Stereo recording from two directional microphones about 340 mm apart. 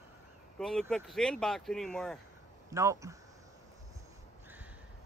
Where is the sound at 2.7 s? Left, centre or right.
Centre.